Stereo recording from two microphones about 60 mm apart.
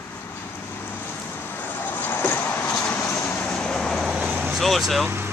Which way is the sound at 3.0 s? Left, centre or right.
Left.